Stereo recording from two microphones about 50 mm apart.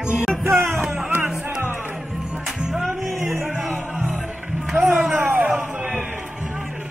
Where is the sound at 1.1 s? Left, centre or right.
Right.